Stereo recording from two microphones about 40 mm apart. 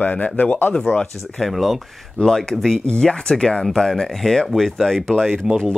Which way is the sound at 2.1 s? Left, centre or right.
Centre.